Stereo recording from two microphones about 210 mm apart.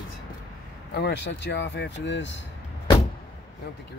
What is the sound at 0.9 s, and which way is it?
Speech, 55° left (ahead or behind).